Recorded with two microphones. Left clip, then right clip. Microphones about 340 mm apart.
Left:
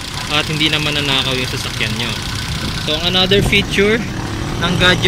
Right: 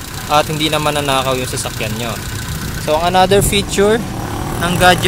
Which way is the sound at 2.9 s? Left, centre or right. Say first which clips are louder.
Right 3 dB; right.